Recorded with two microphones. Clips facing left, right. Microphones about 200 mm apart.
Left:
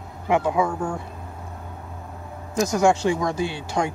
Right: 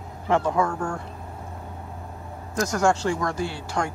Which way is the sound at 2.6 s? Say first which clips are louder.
Left 3 dB; 15° left (ahead or behind).